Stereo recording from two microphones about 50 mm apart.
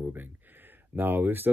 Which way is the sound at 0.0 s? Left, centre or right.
Right.